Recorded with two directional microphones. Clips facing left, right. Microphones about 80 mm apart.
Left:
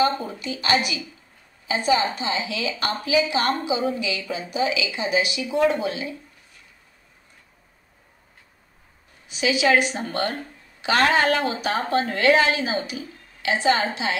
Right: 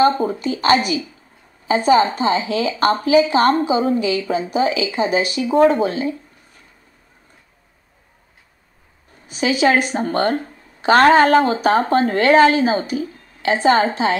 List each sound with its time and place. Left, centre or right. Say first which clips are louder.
0.2 s a woman's voice: right 10 dB; right
9.3 s a woman's voice: right 4 dB; right